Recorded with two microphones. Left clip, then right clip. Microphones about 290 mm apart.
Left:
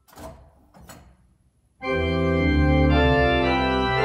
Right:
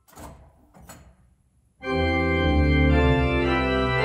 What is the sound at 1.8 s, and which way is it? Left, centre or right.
Organ, centre.